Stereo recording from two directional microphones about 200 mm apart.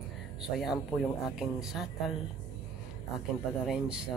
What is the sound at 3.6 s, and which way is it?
Speech, 5° right (ahead or behind).